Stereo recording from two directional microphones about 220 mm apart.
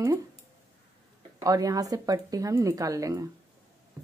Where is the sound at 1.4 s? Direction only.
15° right (ahead or behind).